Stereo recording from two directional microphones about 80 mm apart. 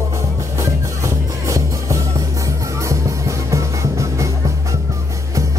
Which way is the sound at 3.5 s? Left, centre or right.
Right.